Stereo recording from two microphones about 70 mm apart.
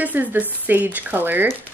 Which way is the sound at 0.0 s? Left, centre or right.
Right.